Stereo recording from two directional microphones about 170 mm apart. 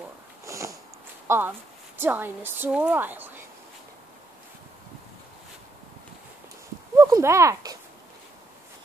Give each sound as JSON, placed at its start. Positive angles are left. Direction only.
{"t": 0.5, "sound": "sniff", "side_deg": -15}
{"t": 1.2, "sound": "a sound", "side_deg": -15}
{"t": 2.0, "sound": "a woman's voice", "side_deg": -10}
{"t": 7.0, "sound": "speech", "side_deg": -15}